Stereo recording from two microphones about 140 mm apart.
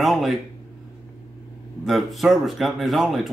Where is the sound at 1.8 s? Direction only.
Centre (ahead or behind).